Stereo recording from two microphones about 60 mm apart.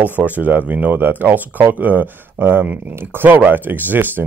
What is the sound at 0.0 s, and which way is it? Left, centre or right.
Speech, right.